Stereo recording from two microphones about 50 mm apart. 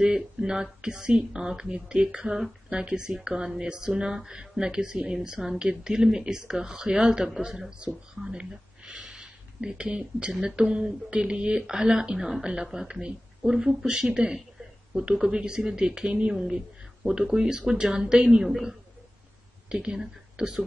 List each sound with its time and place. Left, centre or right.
0.0 s speech: centre